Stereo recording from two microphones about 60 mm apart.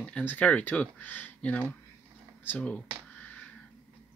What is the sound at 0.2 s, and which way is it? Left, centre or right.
Speech, left.